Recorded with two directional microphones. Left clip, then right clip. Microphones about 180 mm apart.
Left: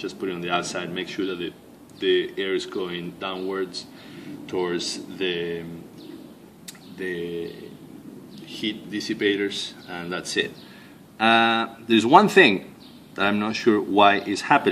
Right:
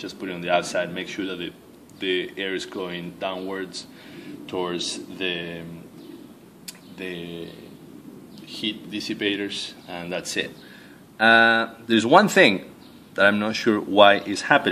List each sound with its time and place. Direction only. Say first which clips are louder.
0.0 s speech: left 2 dB; 20° right (ahead or behind)
7.0 s speech: left 5 dB; 20° right (ahead or behind)
8.5 s speech: even; 15° right (ahead or behind)